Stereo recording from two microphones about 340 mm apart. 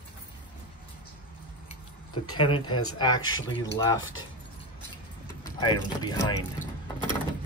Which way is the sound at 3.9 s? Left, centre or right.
Left.